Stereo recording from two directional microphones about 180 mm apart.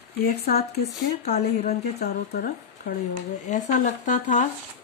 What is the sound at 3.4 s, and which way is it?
Speech, 40° left (ahead or behind).